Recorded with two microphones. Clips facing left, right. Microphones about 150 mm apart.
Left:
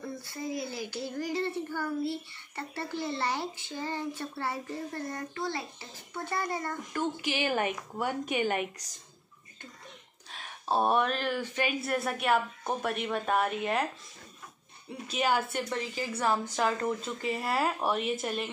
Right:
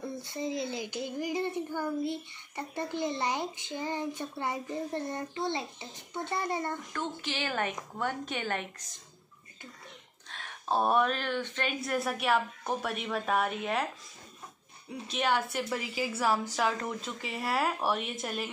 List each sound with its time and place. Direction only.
0.2 s a child's voice: 20° right (ahead or behind)
6.9 s a woman's voice: 15° left (ahead or behind)
10.3 s speech: 5° left (ahead or behind)
14.9 s speech: 5° left (ahead or behind)
15.7 s a child's voice: 10° right (ahead or behind)